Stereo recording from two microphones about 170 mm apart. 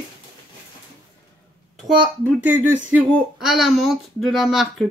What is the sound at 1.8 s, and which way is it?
Speech, centre (ahead or behind).